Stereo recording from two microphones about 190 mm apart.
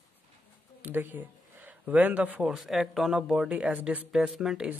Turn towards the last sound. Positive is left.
turn(degrees=-5)  # may be behind; listen again after turning